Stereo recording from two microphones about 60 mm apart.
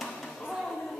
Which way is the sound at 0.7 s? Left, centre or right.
Centre.